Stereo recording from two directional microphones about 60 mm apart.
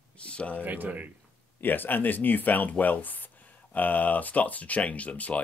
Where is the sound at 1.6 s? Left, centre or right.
Left.